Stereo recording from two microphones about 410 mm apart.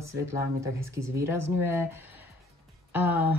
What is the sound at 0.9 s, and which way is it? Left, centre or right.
A woman's voice, centre.